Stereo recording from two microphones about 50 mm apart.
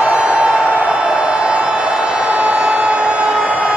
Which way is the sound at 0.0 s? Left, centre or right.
Right.